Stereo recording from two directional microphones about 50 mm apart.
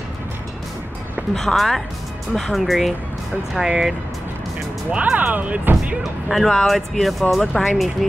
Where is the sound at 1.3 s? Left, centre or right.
Centre.